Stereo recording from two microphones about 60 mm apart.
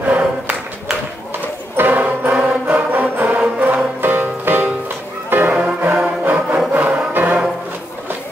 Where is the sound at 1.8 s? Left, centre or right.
Right.